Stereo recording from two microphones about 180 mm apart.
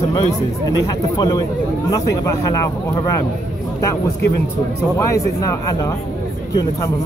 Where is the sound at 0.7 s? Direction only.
20° left (ahead or behind).